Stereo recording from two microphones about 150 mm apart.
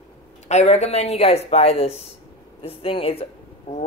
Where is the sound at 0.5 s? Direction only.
50° left (ahead or behind).